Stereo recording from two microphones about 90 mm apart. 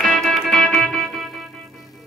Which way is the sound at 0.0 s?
5° left (ahead or behind).